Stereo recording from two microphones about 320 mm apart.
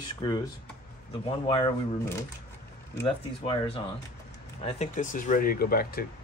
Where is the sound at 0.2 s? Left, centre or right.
Centre.